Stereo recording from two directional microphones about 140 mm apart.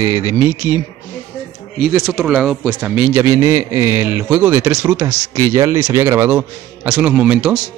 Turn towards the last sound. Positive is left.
turn(degrees=-10)  # may be behind; listen again after turning